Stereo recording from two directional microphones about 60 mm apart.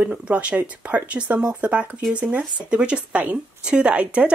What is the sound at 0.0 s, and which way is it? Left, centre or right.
Speech, right.